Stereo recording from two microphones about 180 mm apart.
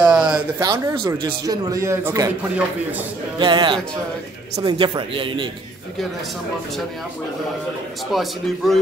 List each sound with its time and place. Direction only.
0.0 s a sound: 5° right (ahead or behind)
0.6 s a man's voice: 20° right (ahead or behind)
3.3 s a man's voice: 25° right (ahead or behind)
8.1 s speech: centre (ahead or behind)